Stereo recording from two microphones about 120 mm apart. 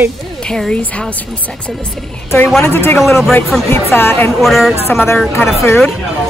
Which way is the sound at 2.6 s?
20° left (ahead or behind).